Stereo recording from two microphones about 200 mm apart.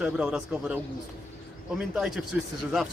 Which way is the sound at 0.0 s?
5° right (ahead or behind).